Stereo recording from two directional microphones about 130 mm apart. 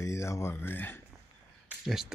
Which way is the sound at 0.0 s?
20° left (ahead or behind).